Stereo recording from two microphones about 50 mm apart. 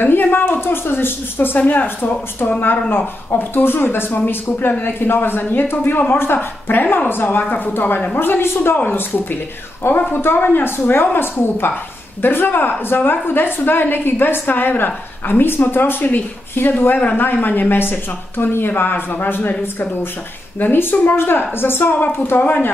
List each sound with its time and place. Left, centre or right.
0.0 s a woman's voice: left
21.9 s speech: left